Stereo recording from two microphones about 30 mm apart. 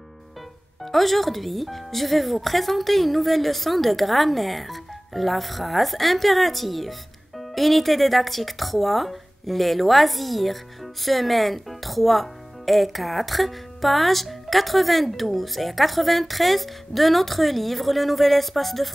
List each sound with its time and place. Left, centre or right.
0.9 s speech: centre